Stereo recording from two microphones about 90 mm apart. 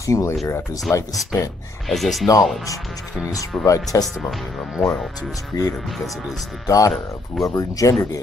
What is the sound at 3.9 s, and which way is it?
Speech, 35° left (ahead or behind).